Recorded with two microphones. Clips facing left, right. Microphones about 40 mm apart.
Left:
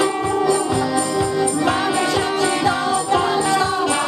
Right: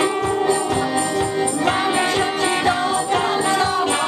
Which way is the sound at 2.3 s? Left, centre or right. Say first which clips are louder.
Even; right.